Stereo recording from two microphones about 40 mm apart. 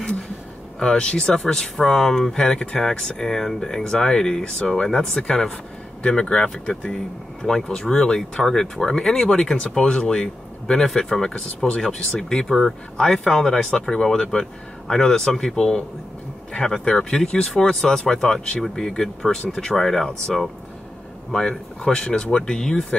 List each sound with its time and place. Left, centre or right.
0.7 s speech: left
6.6 s speech: left
7.7 s speech: centre